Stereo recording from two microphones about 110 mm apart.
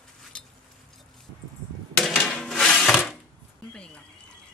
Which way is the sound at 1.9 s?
Centre (ahead or behind).